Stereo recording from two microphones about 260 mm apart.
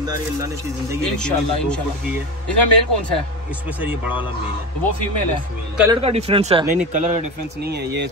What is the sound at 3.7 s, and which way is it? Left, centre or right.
Speech, centre.